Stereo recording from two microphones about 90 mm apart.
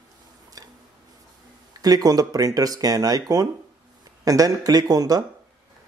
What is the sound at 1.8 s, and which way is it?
Speech, 45° right (ahead or behind).